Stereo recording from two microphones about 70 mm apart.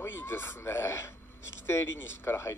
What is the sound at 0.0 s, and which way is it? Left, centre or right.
A man's voice, left.